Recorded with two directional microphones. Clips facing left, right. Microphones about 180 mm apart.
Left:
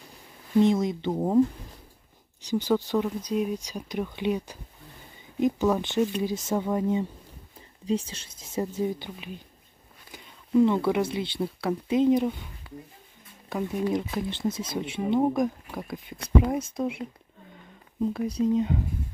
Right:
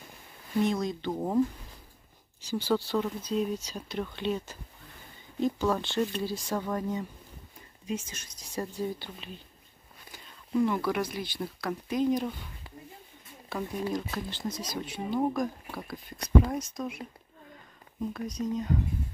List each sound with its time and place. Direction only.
0.6 s speech: 20° left (ahead or behind)
2.4 s speech: 15° left (ahead or behind)
12.7 s a sound: 30° right (ahead or behind)
13.5 s speech: 15° left (ahead or behind)
18.1 s speech: 30° left (ahead or behind)